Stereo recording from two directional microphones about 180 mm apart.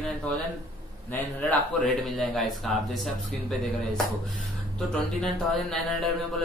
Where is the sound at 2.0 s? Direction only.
Centre (ahead or behind).